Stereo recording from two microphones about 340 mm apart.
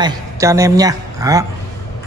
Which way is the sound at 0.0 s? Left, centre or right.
Centre.